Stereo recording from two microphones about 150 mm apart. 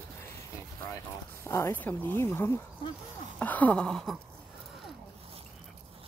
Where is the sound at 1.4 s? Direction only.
15° left (ahead or behind).